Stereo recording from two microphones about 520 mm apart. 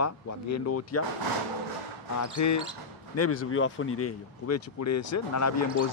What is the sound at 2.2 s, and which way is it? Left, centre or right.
Speech, left.